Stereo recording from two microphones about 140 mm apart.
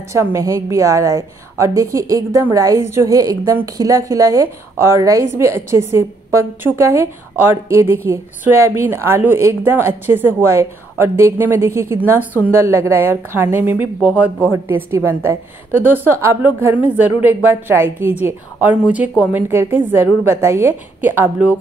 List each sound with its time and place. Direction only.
0.1 s a woman's voice: 20° right (ahead or behind)